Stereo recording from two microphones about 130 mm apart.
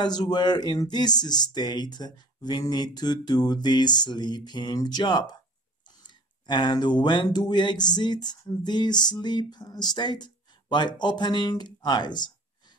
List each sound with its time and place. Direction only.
0.0 s speech: 30° left (ahead or behind)